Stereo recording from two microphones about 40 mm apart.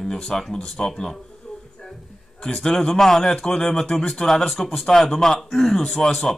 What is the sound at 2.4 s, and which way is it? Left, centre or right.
Speech, centre.